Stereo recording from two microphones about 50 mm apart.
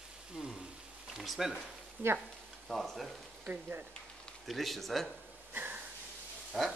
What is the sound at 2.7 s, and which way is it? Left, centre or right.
Speech, centre.